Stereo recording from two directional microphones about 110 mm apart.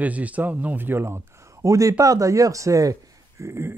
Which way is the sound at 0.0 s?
15° right (ahead or behind).